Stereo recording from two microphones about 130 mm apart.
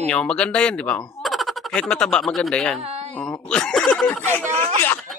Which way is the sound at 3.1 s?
10° left (ahead or behind).